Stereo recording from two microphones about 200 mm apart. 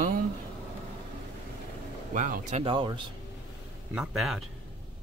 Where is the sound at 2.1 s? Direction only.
40° right (ahead or behind).